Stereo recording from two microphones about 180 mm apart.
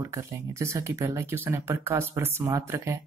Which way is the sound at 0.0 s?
15° right (ahead or behind).